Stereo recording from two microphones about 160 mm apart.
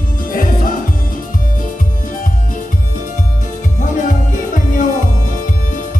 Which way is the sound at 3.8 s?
55° left (ahead or behind).